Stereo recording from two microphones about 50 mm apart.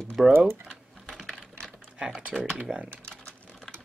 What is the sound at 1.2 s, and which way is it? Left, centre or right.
Typing, centre.